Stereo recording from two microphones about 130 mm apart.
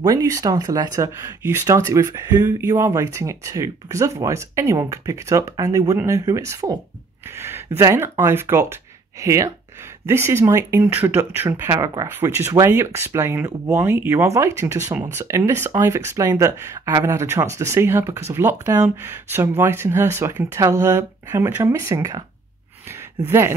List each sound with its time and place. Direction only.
0.0 s speech: 30° right (ahead or behind)